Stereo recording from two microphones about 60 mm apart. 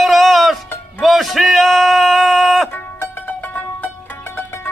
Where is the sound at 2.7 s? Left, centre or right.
Left.